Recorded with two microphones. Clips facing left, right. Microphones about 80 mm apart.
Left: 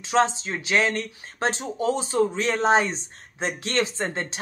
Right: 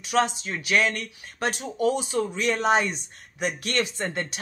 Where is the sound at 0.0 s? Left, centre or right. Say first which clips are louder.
Left 2 dB; left.